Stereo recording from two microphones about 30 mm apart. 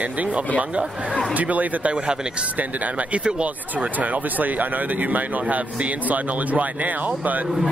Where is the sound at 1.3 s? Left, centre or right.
Right.